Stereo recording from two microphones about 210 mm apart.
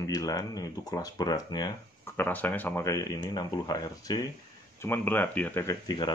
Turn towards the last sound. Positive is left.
turn(degrees=20)  # may be behind; listen again after turning